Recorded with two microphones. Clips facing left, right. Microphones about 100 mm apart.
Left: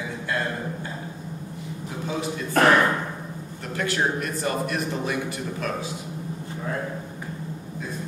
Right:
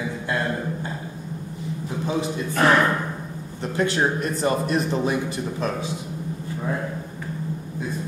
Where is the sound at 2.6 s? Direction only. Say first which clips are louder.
Left 1 dB; 55° left (ahead or behind).